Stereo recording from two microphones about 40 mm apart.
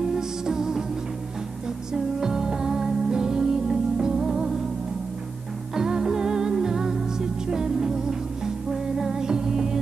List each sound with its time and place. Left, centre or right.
0.0 s music: centre
2.1 s music: centre
5.8 s music: centre